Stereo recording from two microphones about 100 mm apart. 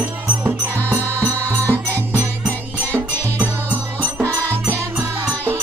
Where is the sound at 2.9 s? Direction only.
20° left (ahead or behind).